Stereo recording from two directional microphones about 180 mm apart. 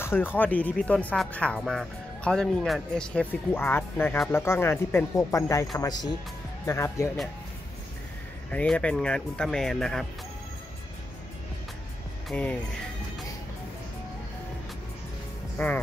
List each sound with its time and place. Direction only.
0.0 s speech: 10° left (ahead or behind)
8.5 s speech: 5° left (ahead or behind)
12.3 s speech: 5° left (ahead or behind)
15.5 s speech: 10° left (ahead or behind)